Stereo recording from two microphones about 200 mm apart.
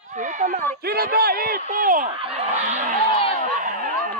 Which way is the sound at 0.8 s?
50° right (ahead or behind).